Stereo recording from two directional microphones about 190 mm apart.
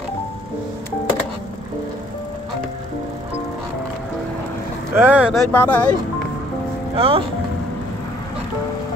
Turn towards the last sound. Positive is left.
turn(degrees=-30)  # may be behind; listen again after turning